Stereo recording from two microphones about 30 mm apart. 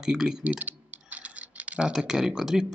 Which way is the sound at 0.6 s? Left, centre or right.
Right.